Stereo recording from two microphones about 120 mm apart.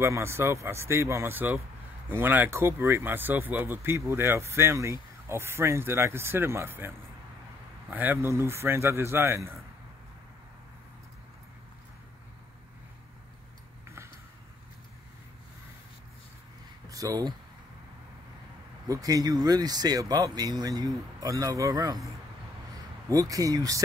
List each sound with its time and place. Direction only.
0.0 s speech: 20° right (ahead or behind)
7.9 s speech: 15° right (ahead or behind)
16.9 s speech: 30° right (ahead or behind)
18.9 s speech: 30° right (ahead or behind)
23.0 s speech: 30° right (ahead or behind)